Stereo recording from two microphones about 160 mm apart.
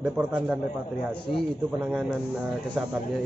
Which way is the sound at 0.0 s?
5° right (ahead or behind).